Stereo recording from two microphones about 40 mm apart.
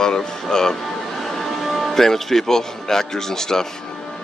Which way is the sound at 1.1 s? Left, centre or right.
Centre.